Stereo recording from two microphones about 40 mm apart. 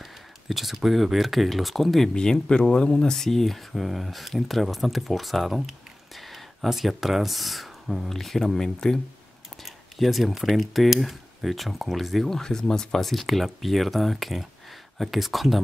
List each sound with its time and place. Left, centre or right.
0.0 s speech: centre
2.1 s speech: left
3.2 s speech: centre
8.1 s speech: centre
8.5 s speech: centre
9.9 s speech: centre
13.0 s speech: centre